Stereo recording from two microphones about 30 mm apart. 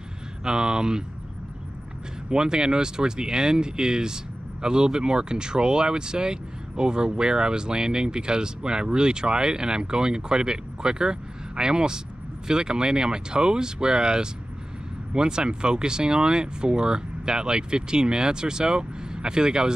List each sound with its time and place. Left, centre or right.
0.4 s speech: right
2.2 s speech: right